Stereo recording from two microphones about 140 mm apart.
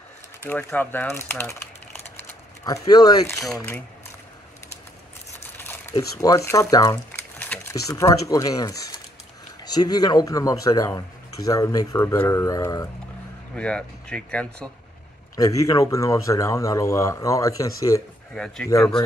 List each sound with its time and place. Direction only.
0.4 s speech: 15° left (ahead or behind)
2.6 s speech: 25° left (ahead or behind)
5.6 s speech: 15° left (ahead or behind)
7.1 s crumpling: 10° left (ahead or behind)
7.9 s speech: 25° left (ahead or behind)
9.8 s speech: 30° left (ahead or behind)
13.6 s speech: 5° left (ahead or behind)
15.3 s speech: 25° left (ahead or behind)
18.3 s speech: 5° left (ahead or behind)